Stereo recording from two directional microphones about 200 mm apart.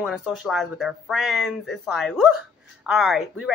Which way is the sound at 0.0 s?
5° right (ahead or behind).